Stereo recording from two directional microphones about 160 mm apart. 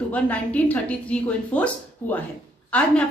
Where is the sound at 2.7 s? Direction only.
5° left (ahead or behind).